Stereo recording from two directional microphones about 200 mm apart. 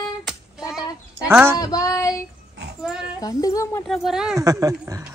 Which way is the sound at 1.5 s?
15° left (ahead or behind).